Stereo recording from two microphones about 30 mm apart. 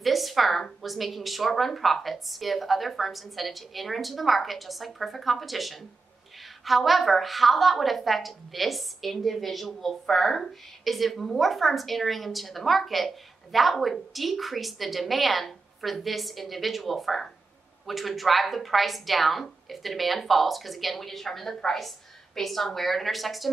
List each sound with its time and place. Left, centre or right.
0.0 s a sound: centre
0.8 s a woman's voice: centre
10.8 s a woman's voice: centre